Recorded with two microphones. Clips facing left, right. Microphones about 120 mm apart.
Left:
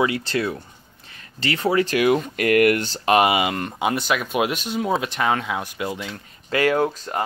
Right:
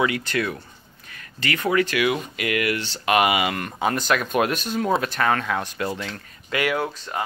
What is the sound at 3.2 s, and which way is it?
Speech, 25° left (ahead or behind).